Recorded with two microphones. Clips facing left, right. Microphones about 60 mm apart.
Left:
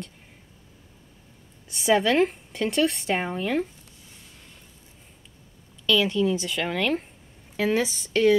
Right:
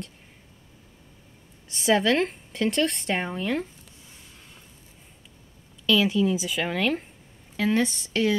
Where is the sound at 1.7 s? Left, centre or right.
Centre.